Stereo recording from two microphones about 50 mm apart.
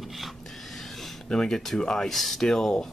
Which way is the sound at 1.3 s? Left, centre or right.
Centre.